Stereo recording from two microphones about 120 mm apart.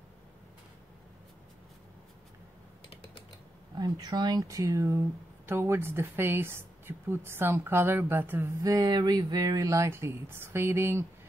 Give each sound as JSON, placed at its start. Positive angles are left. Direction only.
{"t": 3.7, "sound": "speech", "side_deg": -35}
{"t": 8.6, "sound": "speech", "side_deg": -30}